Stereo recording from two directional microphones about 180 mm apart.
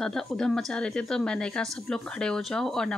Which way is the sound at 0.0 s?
Centre (ahead or behind).